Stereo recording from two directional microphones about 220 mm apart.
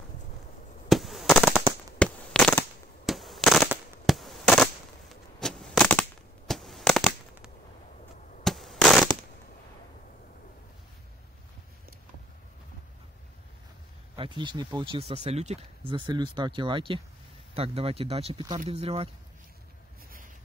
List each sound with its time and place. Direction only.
0.8 s fireworks: centre (ahead or behind)
5.4 s a sound: 5° left (ahead or behind)
8.5 s fireworks: centre (ahead or behind)
14.1 s speech: 20° right (ahead or behind)